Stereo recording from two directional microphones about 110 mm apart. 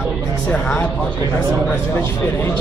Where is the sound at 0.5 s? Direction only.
10° left (ahead or behind).